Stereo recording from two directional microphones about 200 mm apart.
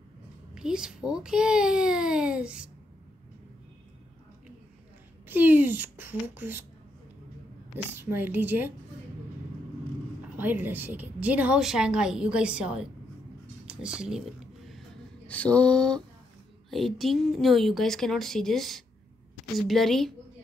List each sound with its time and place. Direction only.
0.6 s a woman's voice: 5° right (ahead or behind)
5.3 s speech: 10° right (ahead or behind)
7.9 s speech: 10° right (ahead or behind)
10.3 s a woman's voice: 10° right (ahead or behind)
13.7 s a sound: 5° right (ahead or behind)
15.2 s a woman's voice: 5° left (ahead or behind)